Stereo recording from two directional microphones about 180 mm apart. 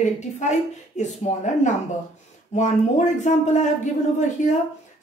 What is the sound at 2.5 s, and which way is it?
Speech, 40° left (ahead or behind).